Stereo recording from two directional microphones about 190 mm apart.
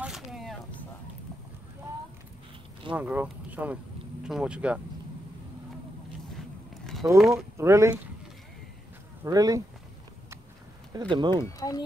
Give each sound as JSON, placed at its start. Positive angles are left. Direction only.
{"t": 0.0, "sound": "a sound", "side_deg": 0}
{"t": 2.9, "sound": "speech", "side_deg": -5}
{"t": 7.0, "sound": "speech", "side_deg": -15}
{"t": 9.2, "sound": "speech", "side_deg": -20}
{"t": 11.0, "sound": "speech", "side_deg": -25}